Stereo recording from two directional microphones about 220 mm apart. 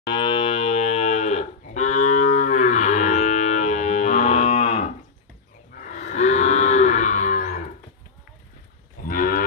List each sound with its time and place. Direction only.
0.1 s cattle: 20° left (ahead or behind)
5.8 s moo: 35° left (ahead or behind)
9.0 s cattle: 40° left (ahead or behind)